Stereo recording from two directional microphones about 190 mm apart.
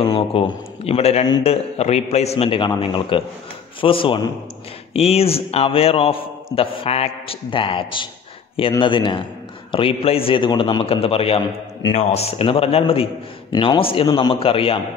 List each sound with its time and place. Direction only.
0.0 s a man's voice: 30° left (ahead or behind)